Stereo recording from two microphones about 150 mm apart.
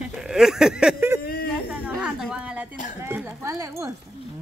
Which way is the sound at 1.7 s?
10° right (ahead or behind).